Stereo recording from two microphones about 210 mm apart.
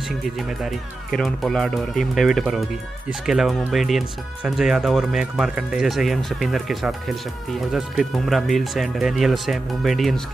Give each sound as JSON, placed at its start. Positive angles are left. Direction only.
{"t": 0.4, "sound": "speech", "side_deg": 0}